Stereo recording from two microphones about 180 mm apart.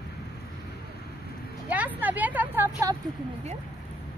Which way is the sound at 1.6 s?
10° right (ahead or behind).